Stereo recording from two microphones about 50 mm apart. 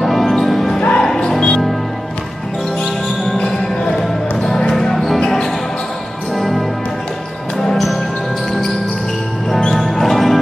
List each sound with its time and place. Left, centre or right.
0.0 s music: centre
0.7 s music: left
1.0 s music: centre
3.3 s basketball bounce: centre
4.5 s music: centre
7.7 s music: centre
9.7 s music: centre